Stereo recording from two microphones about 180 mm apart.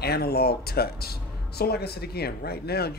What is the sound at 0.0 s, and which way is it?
Speech, 60° left (ahead or behind).